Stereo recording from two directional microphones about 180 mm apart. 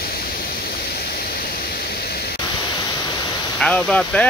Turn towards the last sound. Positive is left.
turn(degrees=5)  # may be behind; listen again after turning